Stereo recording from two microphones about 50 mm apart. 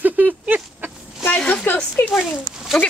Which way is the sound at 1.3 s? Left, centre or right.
Left.